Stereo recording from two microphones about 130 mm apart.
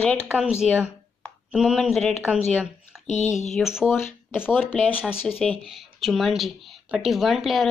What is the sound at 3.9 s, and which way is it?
Speech, 15° left (ahead or behind).